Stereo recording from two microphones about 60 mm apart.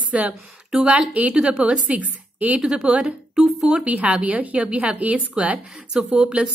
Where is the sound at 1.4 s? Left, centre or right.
Centre.